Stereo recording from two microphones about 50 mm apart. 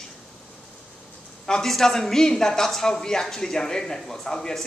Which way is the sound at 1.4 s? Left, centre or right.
Centre.